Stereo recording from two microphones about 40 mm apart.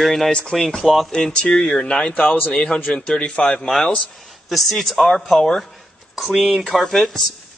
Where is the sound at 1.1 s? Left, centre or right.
Centre.